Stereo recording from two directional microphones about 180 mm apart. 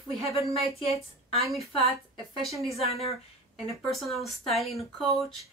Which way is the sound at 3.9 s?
Centre (ahead or behind).